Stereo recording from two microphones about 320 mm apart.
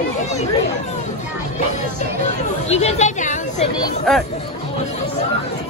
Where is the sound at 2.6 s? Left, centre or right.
Centre.